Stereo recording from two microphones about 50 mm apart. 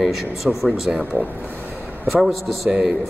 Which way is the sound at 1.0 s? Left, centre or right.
Right.